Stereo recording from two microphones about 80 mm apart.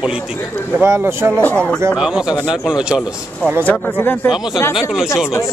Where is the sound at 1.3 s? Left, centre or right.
Centre.